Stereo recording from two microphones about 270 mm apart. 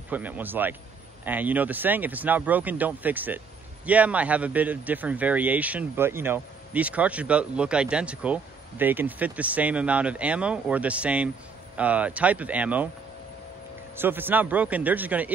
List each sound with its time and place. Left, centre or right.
0.1 s a man's voice: centre
13.9 s a man's voice: centre